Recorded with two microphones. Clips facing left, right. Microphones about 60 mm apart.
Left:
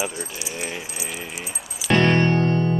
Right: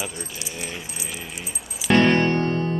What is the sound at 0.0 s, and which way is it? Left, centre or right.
Speech, centre.